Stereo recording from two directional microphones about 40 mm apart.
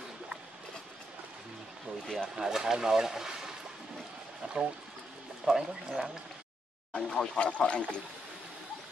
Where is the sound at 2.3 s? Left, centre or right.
Centre.